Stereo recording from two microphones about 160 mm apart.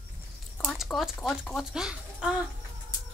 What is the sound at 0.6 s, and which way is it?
Speech, centre (ahead or behind).